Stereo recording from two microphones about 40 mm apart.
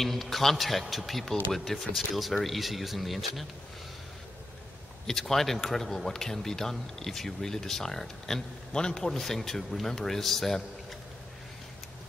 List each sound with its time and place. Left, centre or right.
0.0 s a man's voice: centre
5.0 s a man's voice: centre